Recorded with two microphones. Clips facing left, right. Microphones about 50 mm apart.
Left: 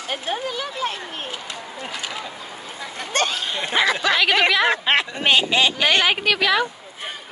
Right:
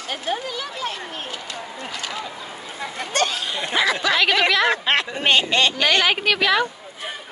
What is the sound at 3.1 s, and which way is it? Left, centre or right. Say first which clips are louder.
Speech: even; left.